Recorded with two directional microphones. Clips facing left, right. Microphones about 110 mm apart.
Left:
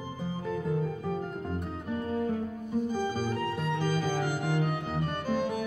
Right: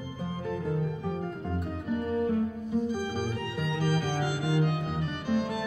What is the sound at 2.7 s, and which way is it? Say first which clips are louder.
Music: left 2 dB; 50° left (ahead or behind).